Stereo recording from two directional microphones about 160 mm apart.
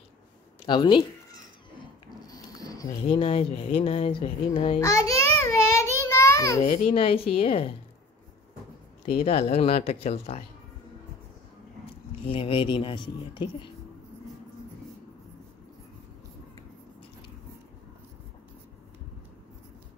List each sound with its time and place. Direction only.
0.7 s speech: 30° left (ahead or behind)
2.0 s a sound: 25° left (ahead or behind)
3.2 s speech: 40° left (ahead or behind)
4.7 s a child's voice: 20° left (ahead or behind)
5.4 s a sound: 20° left (ahead or behind)
6.9 s speech: 35° left (ahead or behind)
9.1 s speech: 40° left (ahead or behind)
12.3 s speech: 35° left (ahead or behind)